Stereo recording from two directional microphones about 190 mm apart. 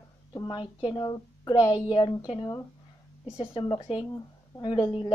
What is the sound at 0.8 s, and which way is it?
A woman's voice, 20° left (ahead or behind).